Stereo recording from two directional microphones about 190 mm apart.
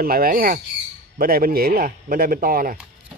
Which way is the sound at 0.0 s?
50° right (ahead or behind).